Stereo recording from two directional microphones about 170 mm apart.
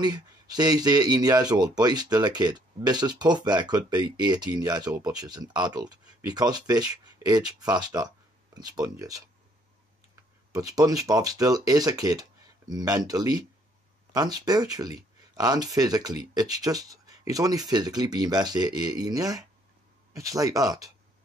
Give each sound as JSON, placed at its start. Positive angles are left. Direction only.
{"t": 0.0, "sound": "speech", "side_deg": -25}
{"t": 10.5, "sound": "speech", "side_deg": -20}